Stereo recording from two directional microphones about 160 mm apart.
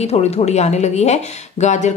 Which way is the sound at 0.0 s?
40° left (ahead or behind).